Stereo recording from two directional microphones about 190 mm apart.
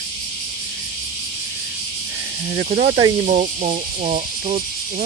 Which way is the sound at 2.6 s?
35° right (ahead or behind).